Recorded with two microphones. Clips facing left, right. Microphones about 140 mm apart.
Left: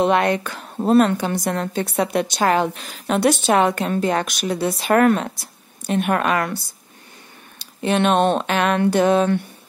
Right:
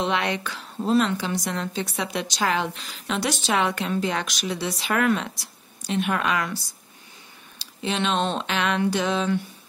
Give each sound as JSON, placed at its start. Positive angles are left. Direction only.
{"t": 0.0, "sound": "a woman's voice", "side_deg": 50}